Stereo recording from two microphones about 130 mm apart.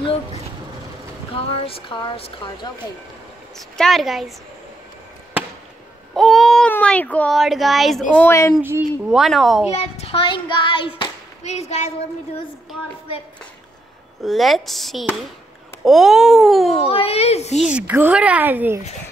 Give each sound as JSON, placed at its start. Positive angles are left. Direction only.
{"t": 0.0, "sound": "speech", "side_deg": 50}
{"t": 3.5, "sound": "speech", "side_deg": 5}
{"t": 6.1, "sound": "baby cry", "side_deg": 0}
{"t": 6.7, "sound": "a sound", "side_deg": 10}
{"t": 7.2, "sound": "speech", "side_deg": 0}
{"t": 8.3, "sound": "speech", "side_deg": 25}
{"t": 9.1, "sound": "speech", "side_deg": 0}
{"t": 9.7, "sound": "speech", "side_deg": 50}
{"t": 10.2, "sound": "child singing", "side_deg": 35}
{"t": 11.4, "sound": "a woman's voice", "side_deg": 60}
{"t": 14.2, "sound": "speech", "side_deg": 0}
{"t": 16.7, "sound": "speech", "side_deg": 45}
{"t": 17.6, "sound": "speech", "side_deg": -10}